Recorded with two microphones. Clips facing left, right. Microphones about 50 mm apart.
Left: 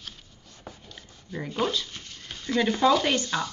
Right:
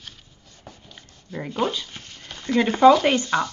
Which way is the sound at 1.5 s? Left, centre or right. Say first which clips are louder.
Right 3 dB; centre.